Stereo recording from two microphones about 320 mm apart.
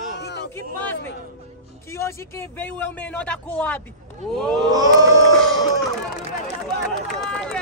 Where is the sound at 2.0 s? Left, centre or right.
Centre.